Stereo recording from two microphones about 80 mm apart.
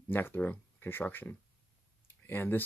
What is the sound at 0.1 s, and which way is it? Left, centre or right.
Speech, left.